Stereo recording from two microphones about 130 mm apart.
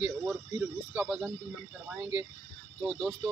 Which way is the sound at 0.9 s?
5° right (ahead or behind).